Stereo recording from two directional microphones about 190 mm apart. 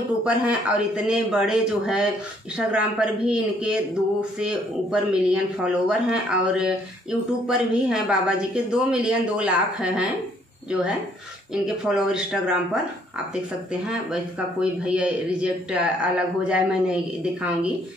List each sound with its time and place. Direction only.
0.2 s a man's voice: 5° right (ahead or behind)